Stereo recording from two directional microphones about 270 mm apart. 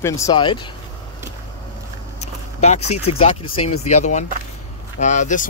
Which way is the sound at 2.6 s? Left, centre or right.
Left.